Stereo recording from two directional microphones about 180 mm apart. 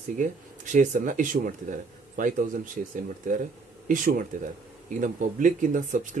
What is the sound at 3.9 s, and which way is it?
Speech, 50° right (ahead or behind).